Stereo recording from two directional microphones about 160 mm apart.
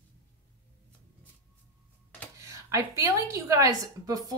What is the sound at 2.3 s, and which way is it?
A woman's voice, 20° right (ahead or behind).